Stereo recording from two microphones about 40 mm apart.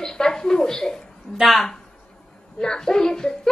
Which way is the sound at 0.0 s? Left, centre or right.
Centre.